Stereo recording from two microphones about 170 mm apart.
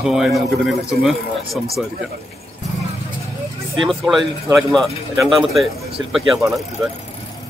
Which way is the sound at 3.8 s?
Centre (ahead or behind).